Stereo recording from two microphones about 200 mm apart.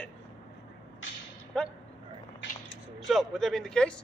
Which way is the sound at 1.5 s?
5° left (ahead or behind).